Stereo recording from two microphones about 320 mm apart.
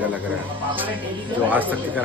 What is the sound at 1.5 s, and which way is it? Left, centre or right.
Speech, centre.